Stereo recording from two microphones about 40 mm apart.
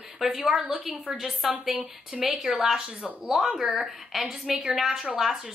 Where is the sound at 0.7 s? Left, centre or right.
Right.